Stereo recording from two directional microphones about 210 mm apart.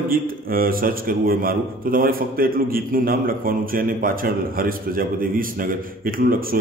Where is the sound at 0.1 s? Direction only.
45° right (ahead or behind).